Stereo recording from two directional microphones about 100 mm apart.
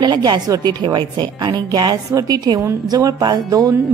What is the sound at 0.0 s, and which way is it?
A woman's voice, 50° right (ahead or behind).